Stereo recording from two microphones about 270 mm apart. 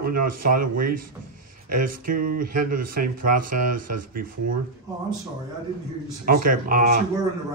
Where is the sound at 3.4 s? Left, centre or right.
Right.